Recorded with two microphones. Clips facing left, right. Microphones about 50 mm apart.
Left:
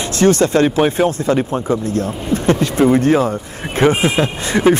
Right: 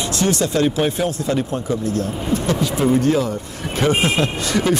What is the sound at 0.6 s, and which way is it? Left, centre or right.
Speech, left.